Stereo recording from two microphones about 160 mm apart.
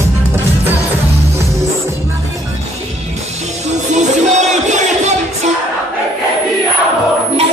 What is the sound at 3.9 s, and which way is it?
Music, 45° right (ahead or behind).